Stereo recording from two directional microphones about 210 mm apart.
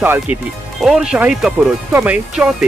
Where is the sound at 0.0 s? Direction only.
10° right (ahead or behind).